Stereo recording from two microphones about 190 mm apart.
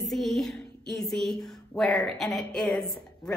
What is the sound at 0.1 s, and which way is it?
A woman's voice, centre (ahead or behind).